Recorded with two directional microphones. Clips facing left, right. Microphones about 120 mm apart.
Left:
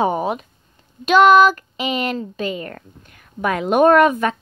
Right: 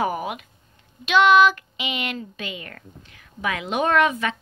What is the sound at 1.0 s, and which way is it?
Speech, 40° left (ahead or behind).